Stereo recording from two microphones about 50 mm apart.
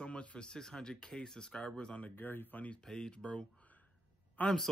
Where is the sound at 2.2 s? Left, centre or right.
Left.